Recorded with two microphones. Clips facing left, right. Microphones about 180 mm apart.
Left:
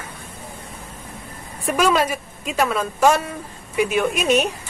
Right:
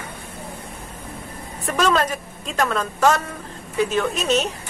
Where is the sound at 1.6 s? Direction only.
10° left (ahead or behind).